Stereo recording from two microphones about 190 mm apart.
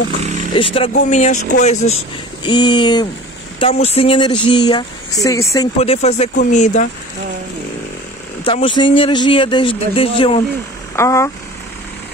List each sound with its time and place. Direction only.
0.2 s vehicle: 40° right (ahead or behind)
0.5 s speech: 30° left (ahead or behind)
2.4 s speech: 25° left (ahead or behind)
5.8 s speech: 35° left (ahead or behind)
8.5 s speech: 30° left (ahead or behind)
11.0 s speech: 15° left (ahead or behind)